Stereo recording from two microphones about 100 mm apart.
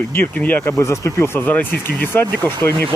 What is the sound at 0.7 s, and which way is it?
Speech, 30° left (ahead or behind).